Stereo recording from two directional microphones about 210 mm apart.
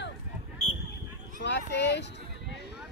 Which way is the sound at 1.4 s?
55° left (ahead or behind).